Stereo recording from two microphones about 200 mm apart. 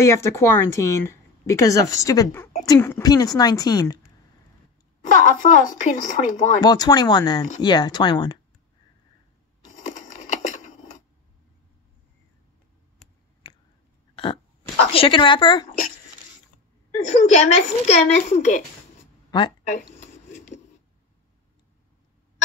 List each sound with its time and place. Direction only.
0.0 s a woman's voice: 15° left (ahead or behind)
5.0 s speech: 40° left (ahead or behind)
6.6 s a woman's voice: 20° left (ahead or behind)
9.7 s a sound: 40° left (ahead or behind)
13.4 s chewing: 25° left (ahead or behind)
14.1 s a sound: 25° left (ahead or behind)
14.9 s a woman's voice: 25° left (ahead or behind)
17.1 s speech: 35° left (ahead or behind)
19.6 s a sound: 35° left (ahead or behind)